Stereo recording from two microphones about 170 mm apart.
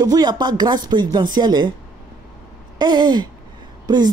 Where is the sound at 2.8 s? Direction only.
25° right (ahead or behind).